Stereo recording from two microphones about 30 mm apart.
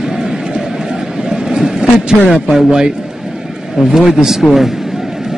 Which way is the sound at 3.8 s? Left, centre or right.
Right.